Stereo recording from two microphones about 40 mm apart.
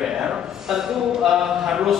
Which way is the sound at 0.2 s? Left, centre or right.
Centre.